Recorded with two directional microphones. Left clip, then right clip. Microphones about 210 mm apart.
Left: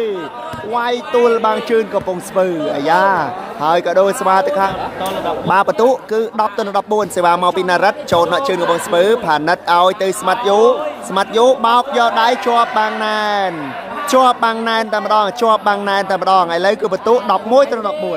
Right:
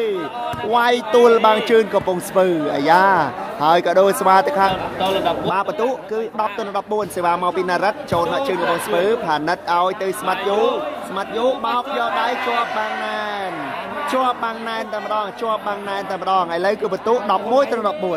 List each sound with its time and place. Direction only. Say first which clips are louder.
0.7 s a man's voice: even; 5° right (ahead or behind)
5.5 s speech: left 8 dB; 20° left (ahead or behind)
11.1 s speech: left 9 dB; 30° left (ahead or behind); by 17.9 s 5° left (ahead or behind)